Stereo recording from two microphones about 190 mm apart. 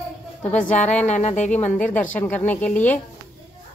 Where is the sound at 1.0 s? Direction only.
40° left (ahead or behind).